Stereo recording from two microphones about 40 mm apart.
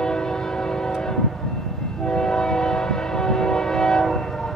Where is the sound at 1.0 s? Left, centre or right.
Centre.